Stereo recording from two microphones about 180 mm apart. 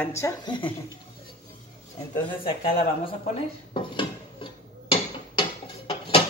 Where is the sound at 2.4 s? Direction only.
30° left (ahead or behind).